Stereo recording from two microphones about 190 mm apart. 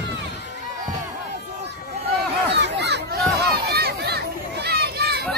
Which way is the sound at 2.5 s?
65° right (ahead or behind).